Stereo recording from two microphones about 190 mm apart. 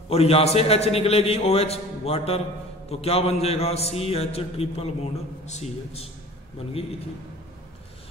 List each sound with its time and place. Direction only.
0.1 s a man's voice: 30° left (ahead or behind)